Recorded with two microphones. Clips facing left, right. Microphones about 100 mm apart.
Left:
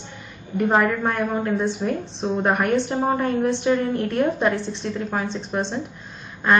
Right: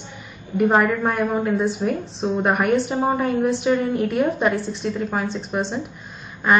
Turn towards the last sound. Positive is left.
turn(degrees=-5)  # may be behind; listen again after turning